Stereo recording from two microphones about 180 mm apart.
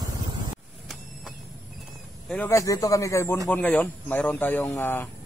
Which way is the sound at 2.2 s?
10° left (ahead or behind).